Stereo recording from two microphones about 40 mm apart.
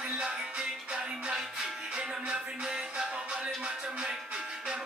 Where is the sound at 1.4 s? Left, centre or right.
Centre.